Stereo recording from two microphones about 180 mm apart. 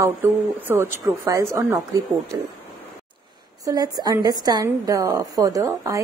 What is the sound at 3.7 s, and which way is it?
A woman's voice, 20° right (ahead or behind).